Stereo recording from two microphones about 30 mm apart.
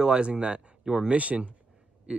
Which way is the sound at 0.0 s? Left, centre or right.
Right.